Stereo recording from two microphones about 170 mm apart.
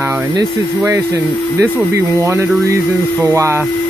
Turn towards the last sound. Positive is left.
turn(degrees=-15)  # may be behind; listen again after turning